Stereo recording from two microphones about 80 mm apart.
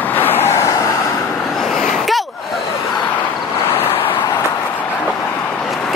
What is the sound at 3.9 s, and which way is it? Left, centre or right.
Vehicle, left.